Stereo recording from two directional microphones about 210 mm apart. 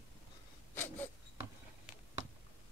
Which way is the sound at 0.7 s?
10° left (ahead or behind).